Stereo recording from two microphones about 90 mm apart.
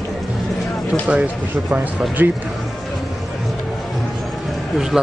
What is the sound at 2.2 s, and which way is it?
Speech, 15° right (ahead or behind).